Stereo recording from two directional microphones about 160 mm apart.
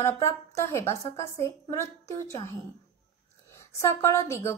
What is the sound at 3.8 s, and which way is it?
Speech, 20° left (ahead or behind).